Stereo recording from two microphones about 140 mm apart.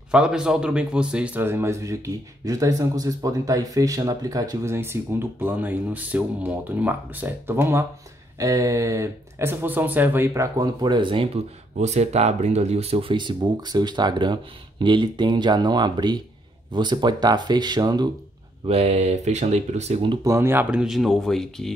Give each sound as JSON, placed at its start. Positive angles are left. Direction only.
{"t": 0.1, "sound": "a man's voice", "side_deg": -5}
{"t": 10.8, "sound": "speech", "side_deg": -35}
{"t": 11.7, "sound": "speech", "side_deg": -55}
{"t": 18.7, "sound": "speech", "side_deg": -45}
{"t": 20.2, "sound": "a man's voice", "side_deg": -20}
{"t": 20.7, "sound": "speech", "side_deg": -5}